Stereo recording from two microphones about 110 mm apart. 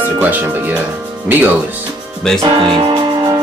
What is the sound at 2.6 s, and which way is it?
Music, 50° right (ahead or behind).